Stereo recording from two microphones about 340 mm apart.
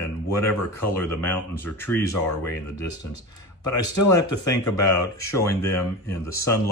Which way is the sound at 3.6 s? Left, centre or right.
Left.